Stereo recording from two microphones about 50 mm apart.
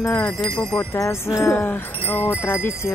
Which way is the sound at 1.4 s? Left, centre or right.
Left.